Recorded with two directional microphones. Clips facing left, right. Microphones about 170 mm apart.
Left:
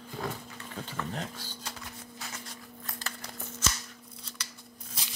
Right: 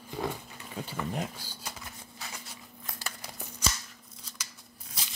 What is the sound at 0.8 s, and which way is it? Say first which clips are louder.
Speech: right 3 dB; 10° right (ahead or behind).